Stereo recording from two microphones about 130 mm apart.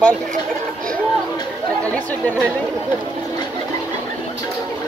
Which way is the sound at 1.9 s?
10° left (ahead or behind).